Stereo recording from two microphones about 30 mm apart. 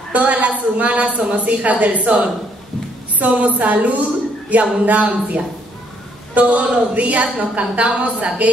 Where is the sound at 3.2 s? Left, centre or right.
Right.